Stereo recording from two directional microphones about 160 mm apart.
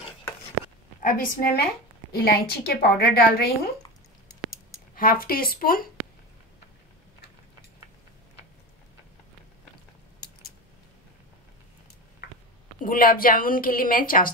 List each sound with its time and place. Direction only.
1.0 s a woman's voice: 60° left (ahead or behind)
4.9 s a woman's voice: 65° left (ahead or behind)
12.8 s a woman's voice: 60° left (ahead or behind)